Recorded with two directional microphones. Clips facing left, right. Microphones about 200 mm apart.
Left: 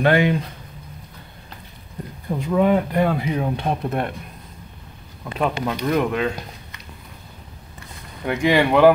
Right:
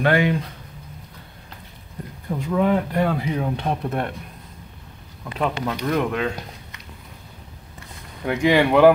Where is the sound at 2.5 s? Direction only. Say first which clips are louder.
Left 2 dB; 15° left (ahead or behind).